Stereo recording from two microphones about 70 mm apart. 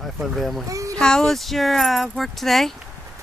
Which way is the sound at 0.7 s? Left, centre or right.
Right.